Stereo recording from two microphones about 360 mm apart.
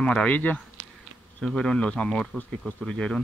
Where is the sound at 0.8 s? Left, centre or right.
Right.